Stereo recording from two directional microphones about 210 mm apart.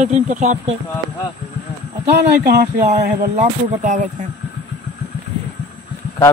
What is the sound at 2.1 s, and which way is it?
Speech, 50° right (ahead or behind).